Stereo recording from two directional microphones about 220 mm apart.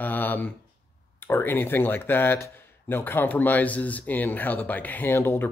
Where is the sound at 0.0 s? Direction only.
10° left (ahead or behind).